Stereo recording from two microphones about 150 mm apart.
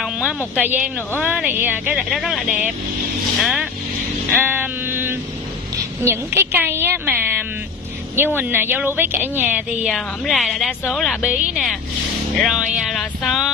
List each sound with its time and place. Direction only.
0.0 s a sound: 5° right (ahead or behind)
0.6 s a woman's voice: 10° right (ahead or behind)
3.3 s music: centre (ahead or behind)
4.3 s sheep: 15° right (ahead or behind)
6.0 s a woman's voice: 15° right (ahead or behind); by 11.1 s centre (ahead or behind)
11.2 s music: 5° right (ahead or behind)